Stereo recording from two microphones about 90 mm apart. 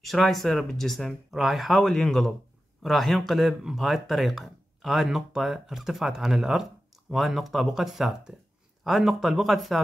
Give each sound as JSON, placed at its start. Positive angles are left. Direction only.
{"t": 0.0, "sound": "speech", "side_deg": 0}